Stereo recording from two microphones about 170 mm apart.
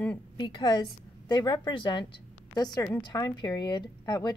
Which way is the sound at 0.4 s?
25° left (ahead or behind).